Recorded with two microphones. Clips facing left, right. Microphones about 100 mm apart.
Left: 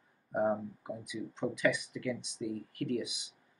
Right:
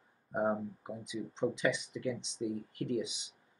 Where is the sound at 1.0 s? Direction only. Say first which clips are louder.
Right 3 dB; 20° right (ahead or behind).